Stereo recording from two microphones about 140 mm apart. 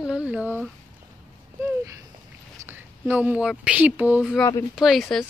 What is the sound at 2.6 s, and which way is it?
Speech, 15° right (ahead or behind).